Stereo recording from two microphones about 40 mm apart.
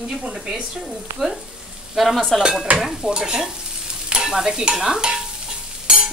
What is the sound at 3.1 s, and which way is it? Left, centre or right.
Speech, centre.